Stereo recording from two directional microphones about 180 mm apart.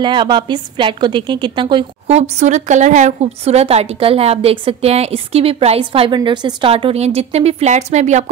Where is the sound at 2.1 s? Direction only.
40° right (ahead or behind).